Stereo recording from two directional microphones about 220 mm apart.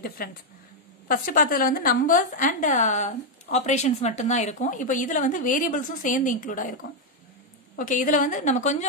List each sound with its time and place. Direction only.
0.2 s a woman's voice: 40° left (ahead or behind)
7.7 s a woman's voice: 40° left (ahead or behind)